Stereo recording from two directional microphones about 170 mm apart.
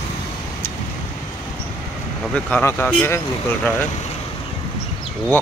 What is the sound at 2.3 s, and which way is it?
Speech, 10° left (ahead or behind).